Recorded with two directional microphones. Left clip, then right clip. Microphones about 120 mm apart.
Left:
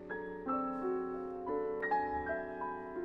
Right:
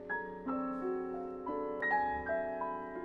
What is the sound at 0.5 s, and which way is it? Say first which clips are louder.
Music: left 1 dB; 5° left (ahead or behind).